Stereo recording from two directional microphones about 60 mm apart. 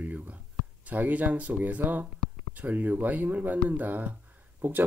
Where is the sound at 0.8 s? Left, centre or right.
Right.